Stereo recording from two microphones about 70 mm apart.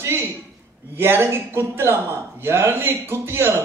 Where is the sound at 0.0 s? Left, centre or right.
Right.